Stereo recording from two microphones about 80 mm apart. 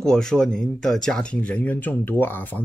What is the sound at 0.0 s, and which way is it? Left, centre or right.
Speech, centre.